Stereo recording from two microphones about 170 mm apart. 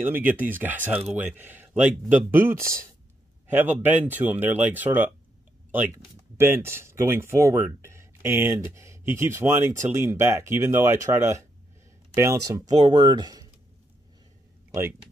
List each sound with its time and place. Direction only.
0.0 s speech: 10° right (ahead or behind)
6.3 s speech: 15° right (ahead or behind)
14.7 s speech: 15° right (ahead or behind)